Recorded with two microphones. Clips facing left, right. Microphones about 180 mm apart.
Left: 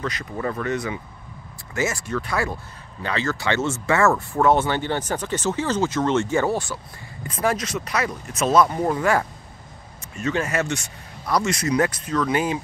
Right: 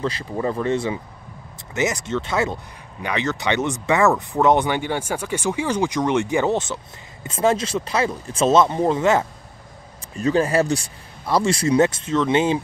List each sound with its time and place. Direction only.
0.0 s speech: 30° right (ahead or behind)
10.1 s speech: 35° right (ahead or behind)